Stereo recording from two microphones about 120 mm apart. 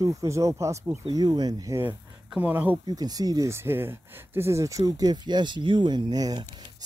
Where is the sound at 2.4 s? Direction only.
15° right (ahead or behind).